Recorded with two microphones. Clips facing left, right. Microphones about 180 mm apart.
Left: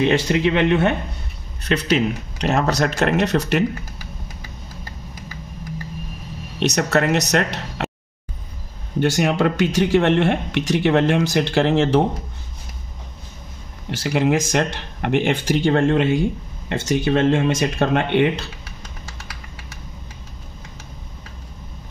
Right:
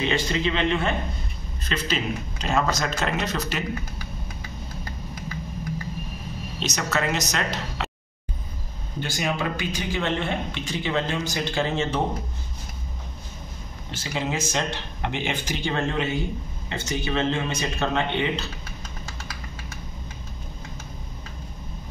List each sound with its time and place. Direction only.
0.0 s speech: 60° left (ahead or behind)
6.6 s speech: 65° left (ahead or behind)
9.0 s speech: 70° left (ahead or behind)
13.8 s speech: 65° left (ahead or behind)